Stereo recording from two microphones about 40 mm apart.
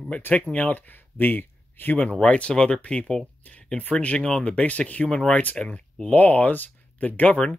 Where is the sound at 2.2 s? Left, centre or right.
Left.